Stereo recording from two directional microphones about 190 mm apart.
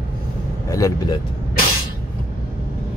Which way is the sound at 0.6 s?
15° left (ahead or behind).